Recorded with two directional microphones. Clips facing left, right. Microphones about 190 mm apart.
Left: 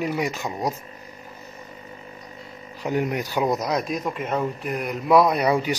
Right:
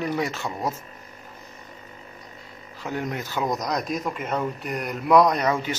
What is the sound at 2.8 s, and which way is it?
Speech, 15° left (ahead or behind).